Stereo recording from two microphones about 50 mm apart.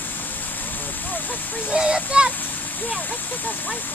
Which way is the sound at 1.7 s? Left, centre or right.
Centre.